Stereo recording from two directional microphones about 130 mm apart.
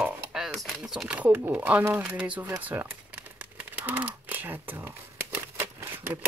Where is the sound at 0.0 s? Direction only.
5° right (ahead or behind).